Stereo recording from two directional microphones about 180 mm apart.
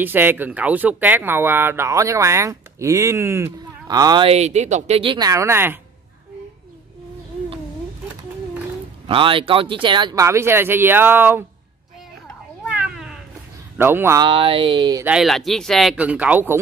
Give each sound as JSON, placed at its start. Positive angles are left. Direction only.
{"t": 0.0, "sound": "speech", "side_deg": -10}
{"t": 4.3, "sound": "speech", "side_deg": -40}
{"t": 9.0, "sound": "speech", "side_deg": -30}
{"t": 12.6, "sound": "cat", "side_deg": -5}
{"t": 13.7, "sound": "speech", "side_deg": -15}
{"t": 14.2, "sound": "speech", "side_deg": -30}
{"t": 15.0, "sound": "speech", "side_deg": 0}